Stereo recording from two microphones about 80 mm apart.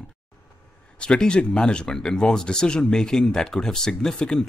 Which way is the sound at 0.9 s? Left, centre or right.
Centre.